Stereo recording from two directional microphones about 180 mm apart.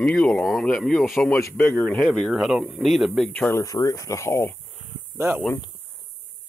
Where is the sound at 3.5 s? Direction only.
15° left (ahead or behind).